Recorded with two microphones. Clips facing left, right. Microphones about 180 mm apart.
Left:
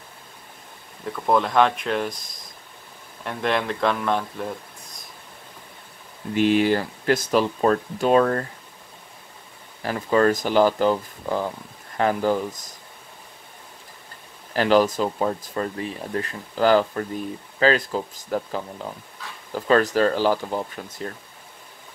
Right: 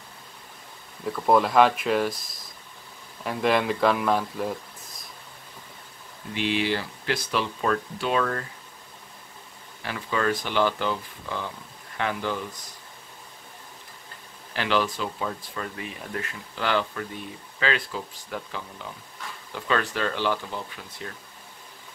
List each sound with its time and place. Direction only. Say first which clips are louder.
1.0 s speech: even; 5° right (ahead or behind)
6.3 s speech: left 7 dB; 45° left (ahead or behind)
9.8 s speech: left 7 dB; 40° left (ahead or behind)
14.5 s speech: left 7 dB; 40° left (ahead or behind)